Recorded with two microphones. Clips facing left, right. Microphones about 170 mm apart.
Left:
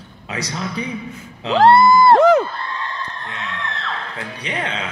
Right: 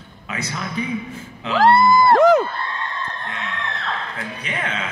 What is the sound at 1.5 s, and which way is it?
Music, 25° left (ahead or behind).